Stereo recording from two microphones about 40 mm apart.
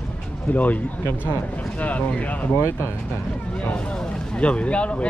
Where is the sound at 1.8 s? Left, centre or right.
Left.